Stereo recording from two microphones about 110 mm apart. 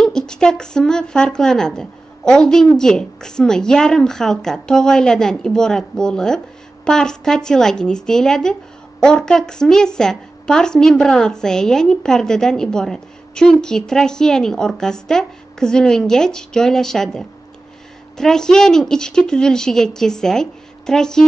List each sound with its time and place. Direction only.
0.0 s speech: 5° left (ahead or behind)